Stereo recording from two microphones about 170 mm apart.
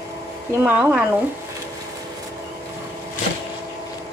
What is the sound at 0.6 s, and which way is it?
Speech, 5° right (ahead or behind).